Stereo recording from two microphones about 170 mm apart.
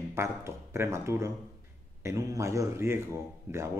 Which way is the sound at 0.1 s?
15° right (ahead or behind).